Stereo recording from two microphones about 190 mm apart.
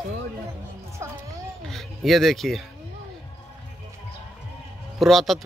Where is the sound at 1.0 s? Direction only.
15° right (ahead or behind).